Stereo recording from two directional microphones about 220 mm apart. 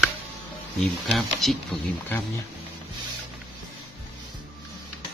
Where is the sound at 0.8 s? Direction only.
Centre (ahead or behind).